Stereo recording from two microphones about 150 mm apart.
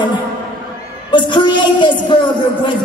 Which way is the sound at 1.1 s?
30° left (ahead or behind).